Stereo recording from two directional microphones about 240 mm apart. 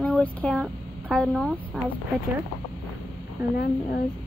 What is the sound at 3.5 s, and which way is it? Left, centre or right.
Speech, left.